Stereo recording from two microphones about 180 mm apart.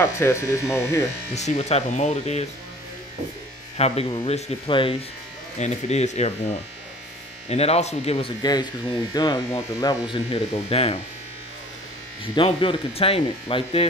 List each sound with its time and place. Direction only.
0.0 s speech: 15° left (ahead or behind)
1.3 s speech: 35° left (ahead or behind)
3.7 s speech: 35° left (ahead or behind)
7.4 s speech: 35° left (ahead or behind)
8.4 s speech: 20° left (ahead or behind)
12.4 s speech: 30° left (ahead or behind)